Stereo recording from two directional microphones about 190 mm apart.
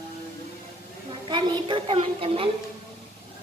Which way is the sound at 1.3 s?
25° right (ahead or behind).